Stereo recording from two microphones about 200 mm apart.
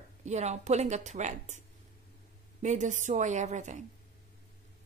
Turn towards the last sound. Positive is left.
turn(degrees=-35)  # may be behind; listen again after turning